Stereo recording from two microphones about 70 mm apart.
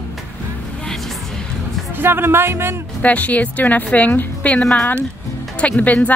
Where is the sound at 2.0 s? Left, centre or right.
Right.